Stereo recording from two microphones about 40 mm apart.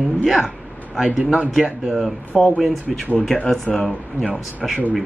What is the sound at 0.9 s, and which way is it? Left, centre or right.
Speech, right.